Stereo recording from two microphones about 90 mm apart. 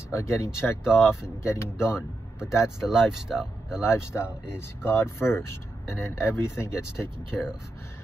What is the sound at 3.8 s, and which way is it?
Speech, 30° left (ahead or behind).